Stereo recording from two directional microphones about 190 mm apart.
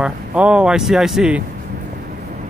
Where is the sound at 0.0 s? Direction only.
5° right (ahead or behind).